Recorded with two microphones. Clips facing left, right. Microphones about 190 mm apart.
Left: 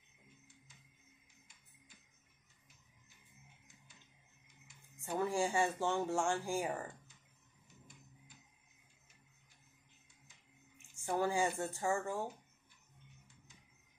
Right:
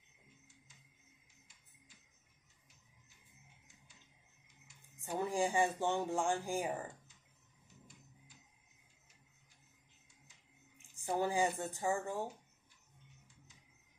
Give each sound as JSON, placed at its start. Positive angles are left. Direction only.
{"t": 5.2, "sound": "speech", "side_deg": -15}
{"t": 11.0, "sound": "speech", "side_deg": -20}